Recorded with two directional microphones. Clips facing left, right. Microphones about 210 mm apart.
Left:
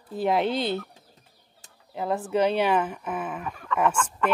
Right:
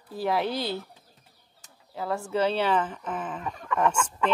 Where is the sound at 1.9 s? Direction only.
20° left (ahead or behind).